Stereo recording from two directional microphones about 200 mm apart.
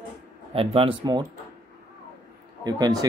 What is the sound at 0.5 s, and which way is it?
Speech, 25° right (ahead or behind).